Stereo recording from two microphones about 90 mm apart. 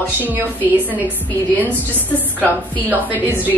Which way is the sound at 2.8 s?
20° right (ahead or behind).